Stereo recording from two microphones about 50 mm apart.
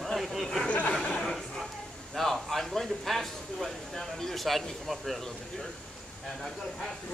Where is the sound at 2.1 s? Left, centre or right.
Centre.